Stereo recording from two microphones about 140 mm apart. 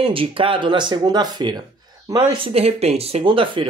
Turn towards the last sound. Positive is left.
turn(degrees=-35)  # may be behind; listen again after turning